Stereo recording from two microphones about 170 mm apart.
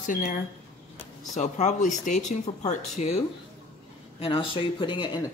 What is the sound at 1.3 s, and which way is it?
Speech, 45° left (ahead or behind).